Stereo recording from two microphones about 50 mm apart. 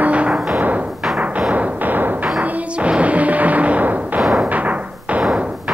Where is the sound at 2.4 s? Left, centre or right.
Right.